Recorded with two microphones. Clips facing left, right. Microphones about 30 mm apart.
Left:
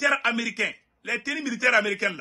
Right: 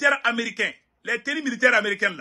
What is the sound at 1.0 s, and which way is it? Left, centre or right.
Speech, centre.